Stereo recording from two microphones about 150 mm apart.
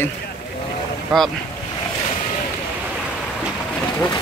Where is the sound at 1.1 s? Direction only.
Centre (ahead or behind).